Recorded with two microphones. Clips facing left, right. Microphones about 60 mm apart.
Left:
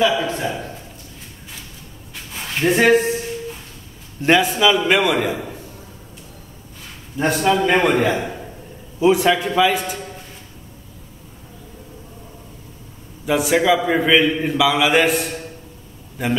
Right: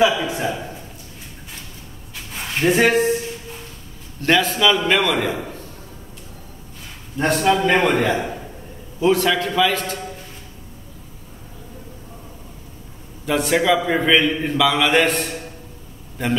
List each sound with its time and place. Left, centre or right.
0.0 s a man's voice: centre
2.5 s speech: centre
4.2 s a man's voice: centre
7.2 s a man's voice: centre
9.0 s a man's voice: centre
13.2 s a man's voice: centre